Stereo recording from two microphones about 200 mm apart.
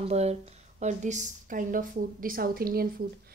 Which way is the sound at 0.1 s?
30° right (ahead or behind).